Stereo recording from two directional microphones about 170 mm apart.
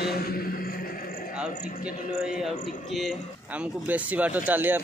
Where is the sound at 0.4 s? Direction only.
60° left (ahead or behind).